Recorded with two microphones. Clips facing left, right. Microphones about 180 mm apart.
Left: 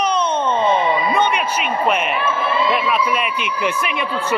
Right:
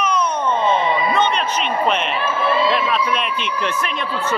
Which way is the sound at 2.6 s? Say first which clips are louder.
Even; 10° left (ahead or behind).